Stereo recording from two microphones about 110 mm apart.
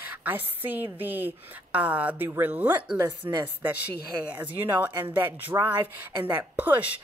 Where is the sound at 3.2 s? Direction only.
40° right (ahead or behind).